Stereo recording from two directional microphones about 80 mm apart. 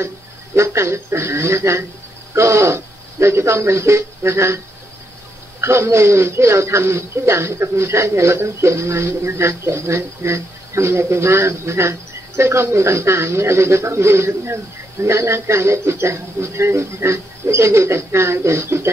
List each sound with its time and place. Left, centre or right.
0.6 s a man's voice: right
5.6 s a man's voice: right